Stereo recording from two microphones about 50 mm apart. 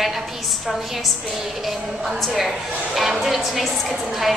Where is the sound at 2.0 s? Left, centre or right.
Centre.